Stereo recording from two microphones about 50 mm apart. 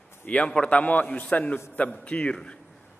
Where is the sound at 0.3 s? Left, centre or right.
Left.